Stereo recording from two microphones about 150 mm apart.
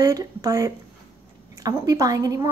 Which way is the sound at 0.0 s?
25° right (ahead or behind).